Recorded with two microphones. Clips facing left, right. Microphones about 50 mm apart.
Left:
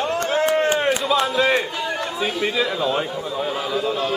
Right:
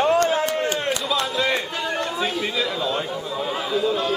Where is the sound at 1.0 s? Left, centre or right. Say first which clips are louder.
Left 4 dB; centre.